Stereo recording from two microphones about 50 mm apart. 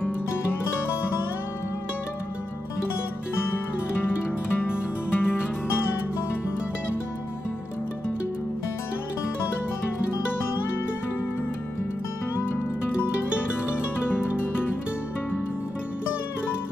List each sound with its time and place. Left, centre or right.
3.5 s music: left